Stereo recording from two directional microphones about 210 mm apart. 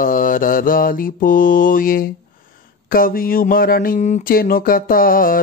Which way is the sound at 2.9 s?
45° left (ahead or behind).